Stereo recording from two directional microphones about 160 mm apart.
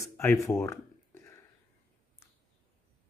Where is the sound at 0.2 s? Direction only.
15° left (ahead or behind).